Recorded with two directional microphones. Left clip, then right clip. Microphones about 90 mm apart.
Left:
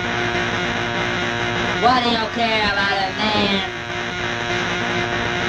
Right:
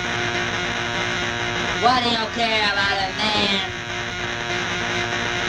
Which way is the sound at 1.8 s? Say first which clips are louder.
Left 2 dB; 30° right (ahead or behind).